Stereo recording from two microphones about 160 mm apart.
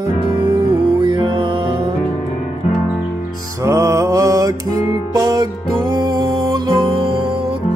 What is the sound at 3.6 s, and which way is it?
Music, 20° right (ahead or behind).